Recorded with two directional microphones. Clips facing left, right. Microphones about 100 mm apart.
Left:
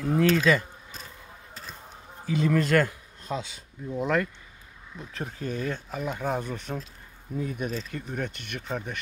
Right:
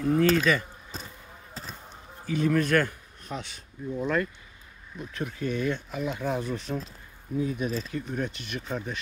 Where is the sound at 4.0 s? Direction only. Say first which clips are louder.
Left 2 dB; 75° left (ahead or behind).